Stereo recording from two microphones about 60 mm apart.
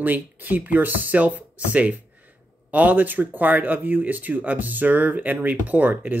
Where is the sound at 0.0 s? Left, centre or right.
Right.